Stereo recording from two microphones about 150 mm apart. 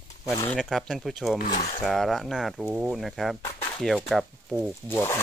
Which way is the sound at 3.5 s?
40° left (ahead or behind).